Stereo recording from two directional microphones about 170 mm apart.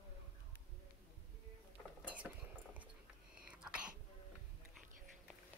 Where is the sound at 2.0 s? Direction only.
10° right (ahead or behind).